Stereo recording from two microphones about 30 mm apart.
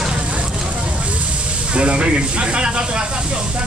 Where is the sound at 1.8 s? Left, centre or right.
Right.